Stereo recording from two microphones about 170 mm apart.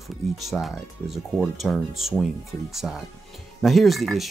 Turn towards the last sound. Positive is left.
turn(degrees=0)  # may be behind; listen again after turning